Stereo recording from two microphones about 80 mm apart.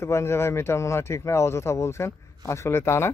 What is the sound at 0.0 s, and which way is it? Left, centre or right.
Speech, left.